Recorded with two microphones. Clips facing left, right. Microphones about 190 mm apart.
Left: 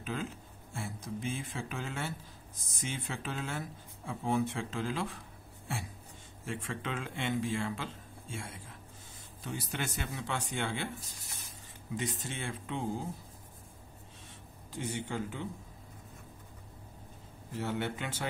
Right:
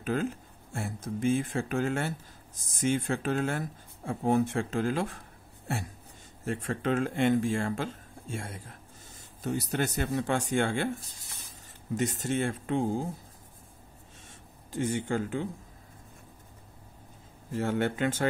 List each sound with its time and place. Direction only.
0.0 s speech: 50° right (ahead or behind)
6.4 s speech: 45° right (ahead or behind)
14.7 s speech: 50° right (ahead or behind)
17.5 s speech: 50° right (ahead or behind)